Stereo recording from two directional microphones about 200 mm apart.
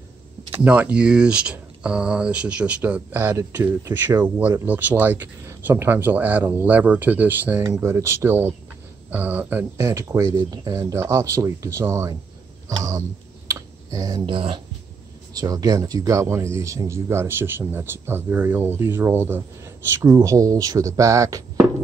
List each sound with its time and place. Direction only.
0.7 s speech: 5° right (ahead or behind)
12.6 s a sound: 15° right (ahead or behind)
13.5 s clicking: 15° right (ahead or behind)
15.3 s speech: 20° right (ahead or behind)